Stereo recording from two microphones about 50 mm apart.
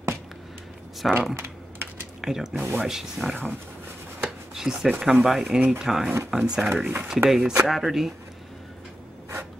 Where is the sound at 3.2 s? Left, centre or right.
Right.